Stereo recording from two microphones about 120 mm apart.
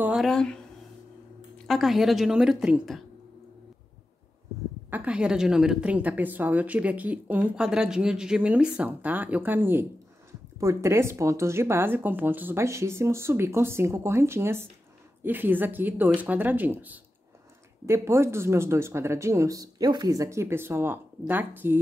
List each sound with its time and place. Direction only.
0.1 s speech: centre (ahead or behind)
1.7 s a woman's voice: centre (ahead or behind)
4.9 s a woman's voice: 10° right (ahead or behind)